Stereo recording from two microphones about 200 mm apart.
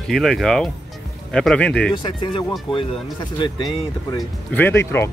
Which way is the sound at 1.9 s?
25° left (ahead or behind).